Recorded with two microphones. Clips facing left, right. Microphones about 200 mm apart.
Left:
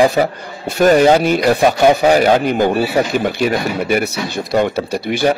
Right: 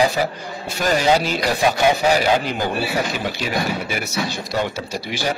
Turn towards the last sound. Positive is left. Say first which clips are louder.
# left 9 dB
turn(degrees=60)  # may be behind; listen again after turning